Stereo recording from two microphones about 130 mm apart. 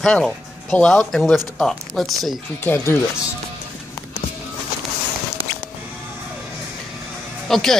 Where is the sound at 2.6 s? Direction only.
15° left (ahead or behind).